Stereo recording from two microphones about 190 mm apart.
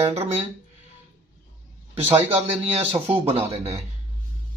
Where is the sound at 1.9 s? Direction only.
35° right (ahead or behind).